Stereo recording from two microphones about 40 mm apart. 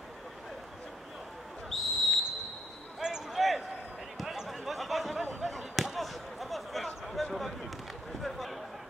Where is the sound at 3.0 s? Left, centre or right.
Centre.